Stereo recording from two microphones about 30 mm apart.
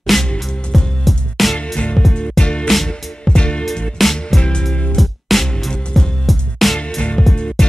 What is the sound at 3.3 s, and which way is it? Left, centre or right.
Music, left.